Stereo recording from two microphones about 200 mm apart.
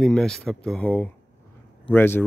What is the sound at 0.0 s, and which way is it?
Speech, 5° left (ahead or behind).